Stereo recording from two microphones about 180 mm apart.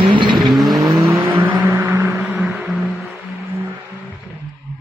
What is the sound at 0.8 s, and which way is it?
Vehicle, 25° right (ahead or behind).